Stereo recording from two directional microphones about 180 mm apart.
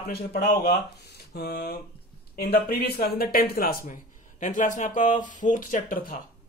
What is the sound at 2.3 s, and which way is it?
Speech, 60° left (ahead or behind).